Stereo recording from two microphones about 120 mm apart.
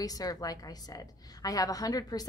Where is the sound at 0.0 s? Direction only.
30° left (ahead or behind).